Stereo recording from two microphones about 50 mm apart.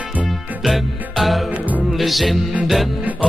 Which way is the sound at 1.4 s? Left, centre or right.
Right.